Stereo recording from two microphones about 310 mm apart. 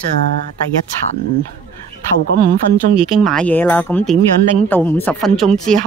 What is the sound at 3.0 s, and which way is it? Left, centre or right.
Speech, centre.